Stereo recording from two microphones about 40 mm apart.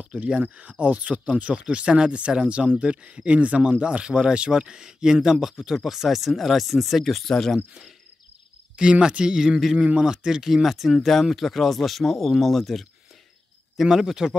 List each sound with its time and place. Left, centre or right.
0.0 s speech: right; by 7.2 s centre
7.2 s speech: centre
8.8 s speech: right
10.0 s speech: centre
13.8 s speech: centre